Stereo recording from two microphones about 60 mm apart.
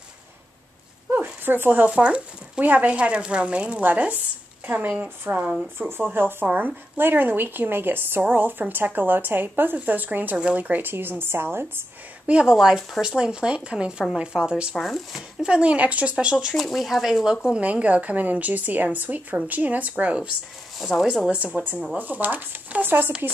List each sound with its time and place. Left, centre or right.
1.4 s speech: right
1.9 s a woman's voice: centre
5.8 s a woman's voice: right
10.3 s a woman's voice: centre
10.6 s speech: right
12.3 s speech: centre
14.8 s speech: centre
15.4 s speech: centre
16.6 s speech: centre
17.5 s a woman's voice: right
20.8 s speech: centre
21.3 s a woman's voice: right